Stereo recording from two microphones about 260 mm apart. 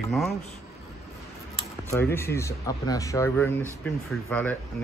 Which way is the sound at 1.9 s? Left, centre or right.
Centre.